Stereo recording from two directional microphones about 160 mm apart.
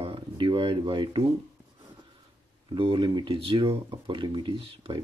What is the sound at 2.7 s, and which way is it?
Speech, 30° right (ahead or behind).